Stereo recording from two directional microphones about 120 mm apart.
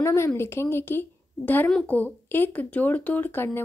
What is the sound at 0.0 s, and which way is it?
A woman's voice, 20° left (ahead or behind).